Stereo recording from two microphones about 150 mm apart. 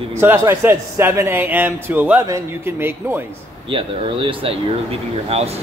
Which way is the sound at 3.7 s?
35° right (ahead or behind).